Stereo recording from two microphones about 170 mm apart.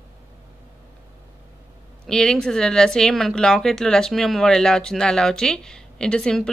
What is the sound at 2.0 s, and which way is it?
Speech, 5° left (ahead or behind).